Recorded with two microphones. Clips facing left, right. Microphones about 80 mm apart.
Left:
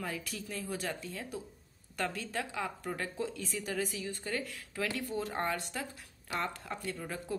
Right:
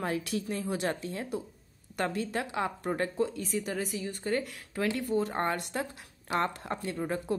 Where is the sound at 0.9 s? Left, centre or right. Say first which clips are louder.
Right 6 dB; right.